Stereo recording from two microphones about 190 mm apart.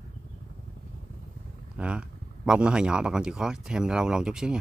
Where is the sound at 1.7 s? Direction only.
5° right (ahead or behind).